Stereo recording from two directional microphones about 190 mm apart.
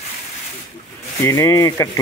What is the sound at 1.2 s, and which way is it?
Speech, 15° left (ahead or behind).